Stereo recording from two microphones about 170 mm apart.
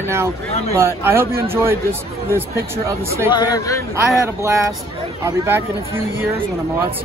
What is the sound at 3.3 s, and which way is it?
Speech, 25° left (ahead or behind).